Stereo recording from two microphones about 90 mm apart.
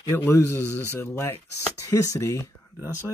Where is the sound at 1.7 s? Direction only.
35° left (ahead or behind).